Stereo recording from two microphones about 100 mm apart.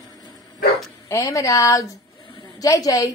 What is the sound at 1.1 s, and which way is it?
Speech, 35° left (ahead or behind).